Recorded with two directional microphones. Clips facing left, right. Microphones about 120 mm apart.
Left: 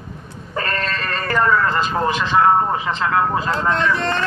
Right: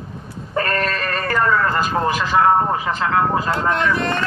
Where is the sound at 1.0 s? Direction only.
30° left (ahead or behind).